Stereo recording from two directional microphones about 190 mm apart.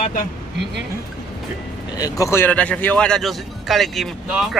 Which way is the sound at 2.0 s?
15° left (ahead or behind).